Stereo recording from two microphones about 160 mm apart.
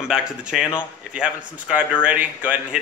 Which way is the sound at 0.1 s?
5° right (ahead or behind).